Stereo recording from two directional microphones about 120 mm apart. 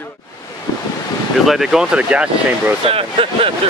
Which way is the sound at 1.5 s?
5° right (ahead or behind).